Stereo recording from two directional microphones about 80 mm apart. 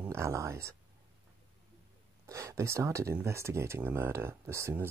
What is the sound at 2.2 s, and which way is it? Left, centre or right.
Speech, right.